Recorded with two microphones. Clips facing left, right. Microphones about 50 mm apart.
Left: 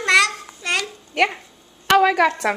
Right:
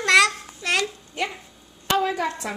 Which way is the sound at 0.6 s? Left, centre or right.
Centre.